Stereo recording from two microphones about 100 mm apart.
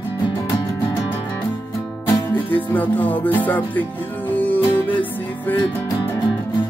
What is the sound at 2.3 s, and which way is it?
Speech, 15° left (ahead or behind).